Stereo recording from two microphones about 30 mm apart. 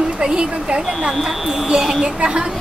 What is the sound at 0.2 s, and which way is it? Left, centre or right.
Speech, right.